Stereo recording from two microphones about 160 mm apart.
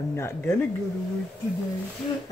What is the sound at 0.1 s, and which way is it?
Speech, 15° left (ahead or behind).